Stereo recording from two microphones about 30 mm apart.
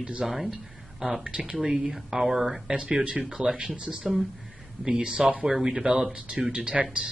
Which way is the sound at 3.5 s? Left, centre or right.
Right.